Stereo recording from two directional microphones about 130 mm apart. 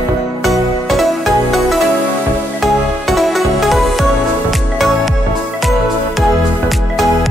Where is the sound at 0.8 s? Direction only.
Centre (ahead or behind).